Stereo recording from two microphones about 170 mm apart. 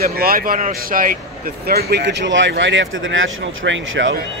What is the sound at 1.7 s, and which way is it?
Speech, 65° right (ahead or behind).